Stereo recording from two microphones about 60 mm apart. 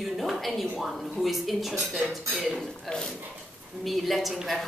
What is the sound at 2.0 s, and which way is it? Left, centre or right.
Speech, centre.